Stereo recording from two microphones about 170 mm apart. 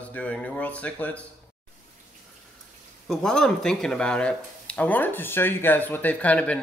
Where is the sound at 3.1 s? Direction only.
5° left (ahead or behind).